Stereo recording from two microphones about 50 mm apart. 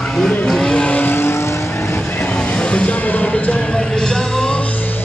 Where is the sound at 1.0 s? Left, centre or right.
Left.